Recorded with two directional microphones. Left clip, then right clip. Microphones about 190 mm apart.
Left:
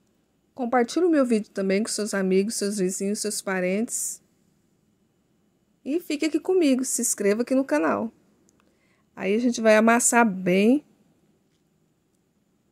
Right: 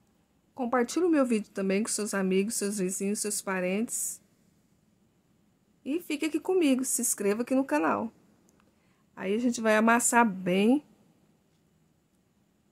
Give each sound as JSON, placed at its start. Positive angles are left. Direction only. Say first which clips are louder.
{"t": 0.6, "sound": "speech", "louder": "left 5 dB", "side_deg": 15}
{"t": 5.9, "sound": "a woman's voice", "louder": "left 5 dB", "side_deg": 15}